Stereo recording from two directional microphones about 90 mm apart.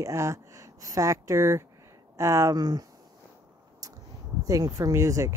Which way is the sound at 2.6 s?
45° right (ahead or behind).